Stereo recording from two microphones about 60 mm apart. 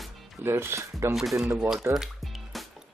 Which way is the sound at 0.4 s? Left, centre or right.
Right.